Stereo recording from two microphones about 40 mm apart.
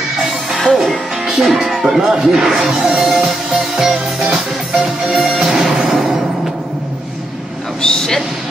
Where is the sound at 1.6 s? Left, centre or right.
Centre.